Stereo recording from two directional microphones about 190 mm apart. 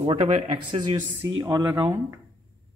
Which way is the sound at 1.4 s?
20° right (ahead or behind).